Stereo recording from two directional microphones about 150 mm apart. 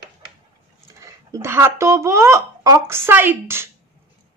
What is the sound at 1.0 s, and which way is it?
A woman's voice, 20° right (ahead or behind).